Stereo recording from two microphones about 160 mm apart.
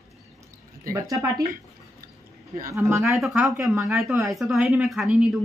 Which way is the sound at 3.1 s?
Centre (ahead or behind).